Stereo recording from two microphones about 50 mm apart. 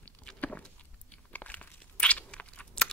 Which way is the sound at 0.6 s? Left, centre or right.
Left.